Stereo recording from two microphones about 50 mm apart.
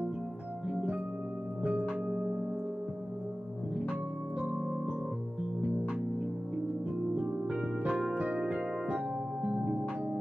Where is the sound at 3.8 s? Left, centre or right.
Centre.